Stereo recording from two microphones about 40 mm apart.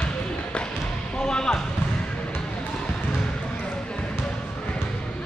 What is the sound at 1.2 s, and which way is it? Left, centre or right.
Basketball bounce, centre.